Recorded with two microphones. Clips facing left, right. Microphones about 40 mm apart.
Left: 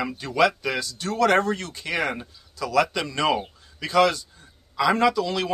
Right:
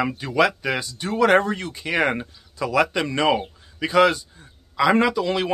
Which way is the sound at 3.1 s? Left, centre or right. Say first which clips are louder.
Right 2 dB; centre.